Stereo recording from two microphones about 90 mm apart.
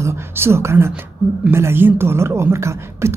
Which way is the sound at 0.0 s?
30° right (ahead or behind).